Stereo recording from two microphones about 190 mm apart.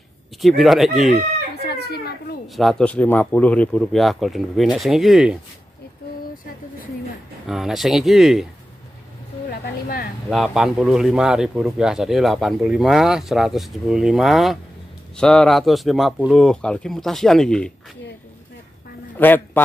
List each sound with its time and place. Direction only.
0.4 s a man's voice: centre (ahead or behind)
0.9 s chicken: 40° right (ahead or behind)
1.7 s children playing: 55° left (ahead or behind)
2.4 s a man's voice: centre (ahead or behind)
7.4 s a man's voice: centre (ahead or behind)
9.5 s a sound: 55° left (ahead or behind)
10.3 s a man's voice: centre (ahead or behind)
19.1 s a man's voice: 10° left (ahead or behind)